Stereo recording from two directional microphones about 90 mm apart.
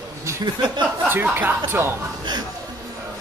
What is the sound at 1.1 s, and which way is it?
Speech, 25° right (ahead or behind).